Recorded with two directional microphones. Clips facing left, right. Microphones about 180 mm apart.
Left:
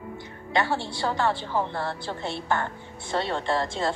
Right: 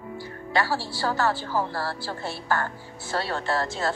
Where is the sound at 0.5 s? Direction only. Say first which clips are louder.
Even; 25° left (ahead or behind).